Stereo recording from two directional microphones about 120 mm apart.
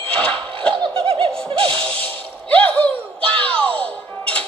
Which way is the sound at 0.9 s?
50° right (ahead or behind).